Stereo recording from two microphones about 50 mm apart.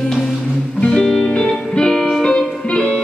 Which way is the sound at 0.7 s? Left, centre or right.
Centre.